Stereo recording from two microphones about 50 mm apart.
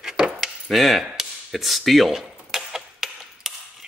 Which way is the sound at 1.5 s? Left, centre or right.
Centre.